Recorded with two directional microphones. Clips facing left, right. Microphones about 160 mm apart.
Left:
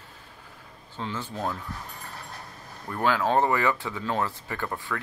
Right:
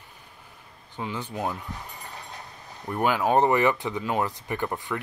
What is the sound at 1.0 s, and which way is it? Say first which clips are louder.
Speech: right 1 dB; 15° right (ahead or behind).